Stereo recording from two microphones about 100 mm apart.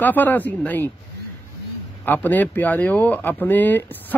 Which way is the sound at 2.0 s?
15° left (ahead or behind).